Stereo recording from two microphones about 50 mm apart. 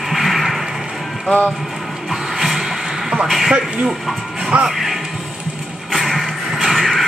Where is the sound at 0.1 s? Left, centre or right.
Centre.